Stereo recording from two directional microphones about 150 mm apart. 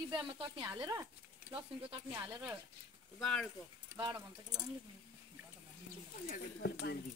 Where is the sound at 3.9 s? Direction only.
25° right (ahead or behind).